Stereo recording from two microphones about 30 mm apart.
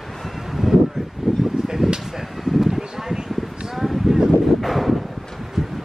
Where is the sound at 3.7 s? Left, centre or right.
Centre.